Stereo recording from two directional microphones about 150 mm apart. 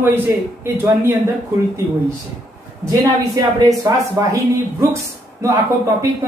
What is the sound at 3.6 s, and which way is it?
A woman's voice, 20° right (ahead or behind).